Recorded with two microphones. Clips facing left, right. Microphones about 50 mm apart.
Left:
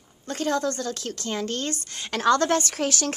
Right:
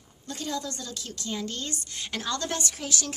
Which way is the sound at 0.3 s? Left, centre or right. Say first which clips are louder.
Left 8 dB; left.